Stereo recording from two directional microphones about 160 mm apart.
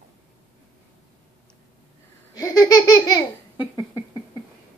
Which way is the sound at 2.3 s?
20° left (ahead or behind).